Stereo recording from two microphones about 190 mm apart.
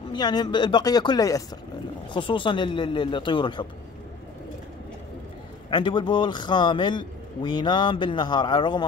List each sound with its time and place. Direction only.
0.1 s a man's voice: 20° left (ahead or behind)
5.7 s a man's voice: 25° left (ahead or behind)